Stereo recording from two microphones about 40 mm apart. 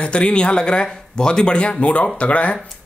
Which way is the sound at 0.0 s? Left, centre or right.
Left.